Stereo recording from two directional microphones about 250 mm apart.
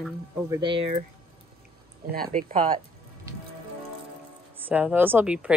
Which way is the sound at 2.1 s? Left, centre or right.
Right.